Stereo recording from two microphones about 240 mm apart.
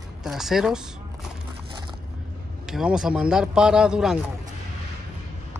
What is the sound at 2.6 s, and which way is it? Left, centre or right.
Speech, centre.